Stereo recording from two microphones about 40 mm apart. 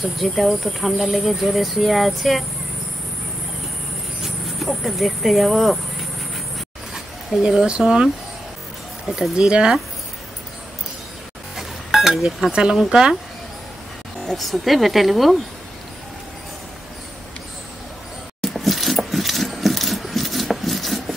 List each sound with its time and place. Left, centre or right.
0.0 s speech: centre
4.2 s vehicle: centre
5.6 s speech: centre
7.3 s speech: right
9.4 s speech: centre
11.5 s music: centre
12.7 s speech: centre
14.2 s speech: centre
18.4 s coin: centre